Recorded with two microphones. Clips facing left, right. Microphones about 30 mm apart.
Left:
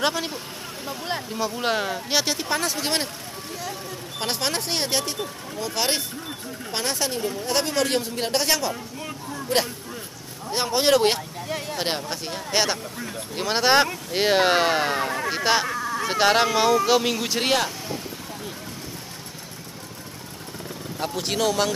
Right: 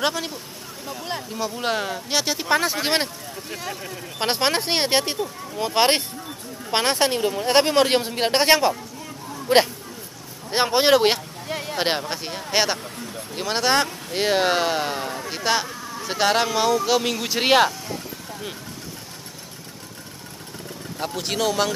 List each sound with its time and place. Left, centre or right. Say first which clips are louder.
0.0 s speech: even; centre
2.3 s speech: right 4 dB; centre
4.2 s speech: right 5 dB; right; by 11.7 s centre
11.7 s speech: right 5 dB; centre
12.3 s speech: right 1 dB; centre
13.3 s speech: left 1 dB; centre
15.7 s a sound: left 7 dB; left
16.1 s speech: left 1 dB; centre
21.0 s speech: even; centre